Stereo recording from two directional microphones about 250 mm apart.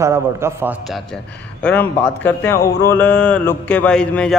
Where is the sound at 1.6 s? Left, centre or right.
Centre.